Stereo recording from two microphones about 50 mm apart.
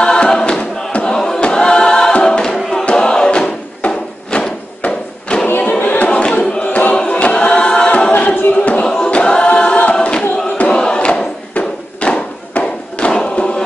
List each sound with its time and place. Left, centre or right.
0.0 s choir: centre
2.8 s music: centre
3.9 s a sound: centre
4.8 s a sound: left
5.6 s choir: left
6.6 s chant: left
7.1 s choir: left
8.5 s a sound: left
8.8 s choir: centre